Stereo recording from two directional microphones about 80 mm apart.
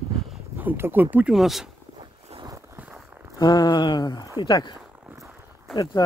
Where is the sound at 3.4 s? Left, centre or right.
Left.